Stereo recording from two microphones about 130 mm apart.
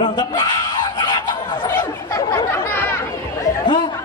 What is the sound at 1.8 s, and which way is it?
Chatter, 30° left (ahead or behind).